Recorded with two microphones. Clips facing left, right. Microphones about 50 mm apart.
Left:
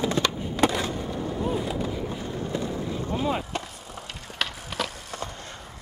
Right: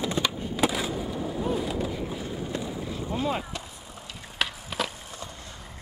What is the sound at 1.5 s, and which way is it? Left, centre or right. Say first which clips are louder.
Vehicle: even; centre.